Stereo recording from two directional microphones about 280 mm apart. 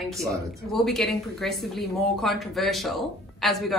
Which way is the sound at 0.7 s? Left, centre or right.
Centre.